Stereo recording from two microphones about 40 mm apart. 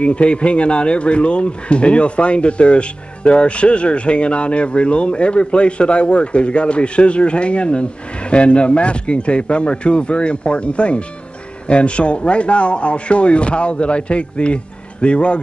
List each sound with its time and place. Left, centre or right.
0.0 s speech: left